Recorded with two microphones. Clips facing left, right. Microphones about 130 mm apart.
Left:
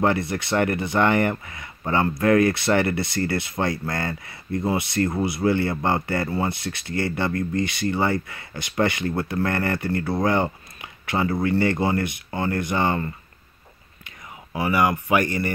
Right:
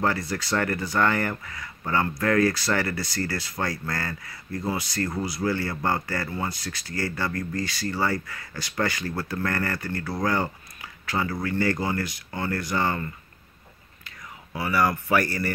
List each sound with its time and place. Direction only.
0.0 s speech: 25° left (ahead or behind)